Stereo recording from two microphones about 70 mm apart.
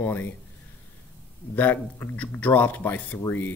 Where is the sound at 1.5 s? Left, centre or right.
Left.